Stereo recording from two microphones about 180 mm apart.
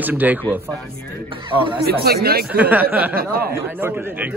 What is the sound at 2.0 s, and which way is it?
Speech, 60° right (ahead or behind).